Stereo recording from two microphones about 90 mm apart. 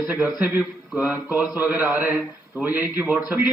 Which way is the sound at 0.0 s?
20° right (ahead or behind).